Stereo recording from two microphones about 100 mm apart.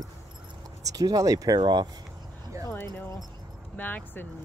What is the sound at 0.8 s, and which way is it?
Speech, 35° right (ahead or behind).